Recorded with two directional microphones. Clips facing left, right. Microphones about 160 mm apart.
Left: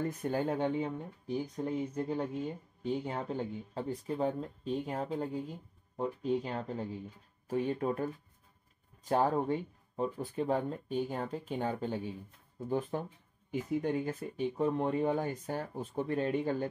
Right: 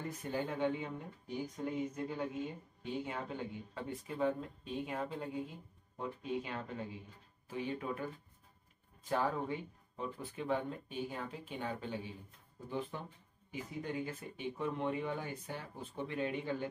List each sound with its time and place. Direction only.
0.2 s speech: 45° left (ahead or behind)
9.1 s speech: 40° left (ahead or behind)